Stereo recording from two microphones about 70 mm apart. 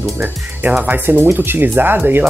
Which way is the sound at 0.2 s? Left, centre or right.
Right.